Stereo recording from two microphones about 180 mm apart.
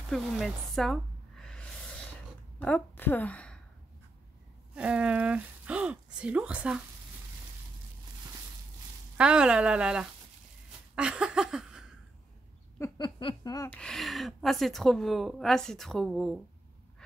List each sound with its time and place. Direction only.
0.1 s a sound: centre (ahead or behind)
2.6 s a woman's voice: 10° left (ahead or behind)
4.7 s speech: 5° right (ahead or behind)
9.1 s speech: 5° right (ahead or behind)
12.7 s a sound: 20° left (ahead or behind)
13.7 s speech: 5° left (ahead or behind)